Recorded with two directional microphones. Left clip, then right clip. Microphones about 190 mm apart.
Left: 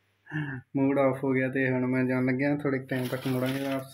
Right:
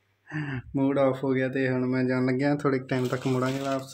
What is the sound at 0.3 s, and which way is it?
Speech, centre (ahead or behind).